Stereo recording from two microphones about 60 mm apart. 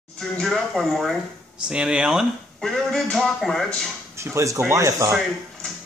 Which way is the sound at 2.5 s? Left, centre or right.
Centre.